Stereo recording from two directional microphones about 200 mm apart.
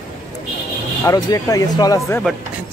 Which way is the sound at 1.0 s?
15° left (ahead or behind).